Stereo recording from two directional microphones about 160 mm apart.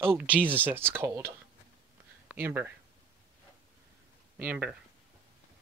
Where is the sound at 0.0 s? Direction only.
10° right (ahead or behind).